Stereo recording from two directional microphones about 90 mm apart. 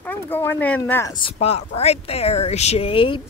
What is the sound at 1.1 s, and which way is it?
Speech, 80° left.